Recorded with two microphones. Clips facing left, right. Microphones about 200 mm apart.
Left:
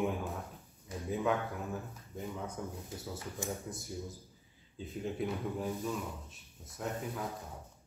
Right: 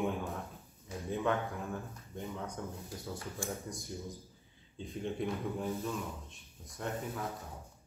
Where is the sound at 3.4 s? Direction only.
20° left (ahead or behind).